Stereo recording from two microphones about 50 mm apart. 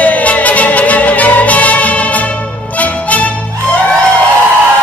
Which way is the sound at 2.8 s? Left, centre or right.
Left.